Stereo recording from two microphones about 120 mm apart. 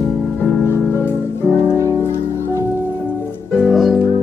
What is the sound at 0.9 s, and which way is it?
Music, 20° left (ahead or behind).